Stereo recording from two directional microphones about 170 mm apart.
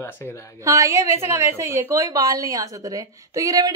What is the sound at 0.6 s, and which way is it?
A woman's voice, 20° right (ahead or behind).